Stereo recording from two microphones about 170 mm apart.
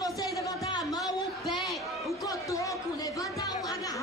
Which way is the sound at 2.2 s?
20° left (ahead or behind).